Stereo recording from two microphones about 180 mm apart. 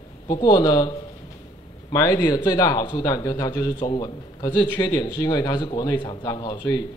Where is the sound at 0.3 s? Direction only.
25° left (ahead or behind).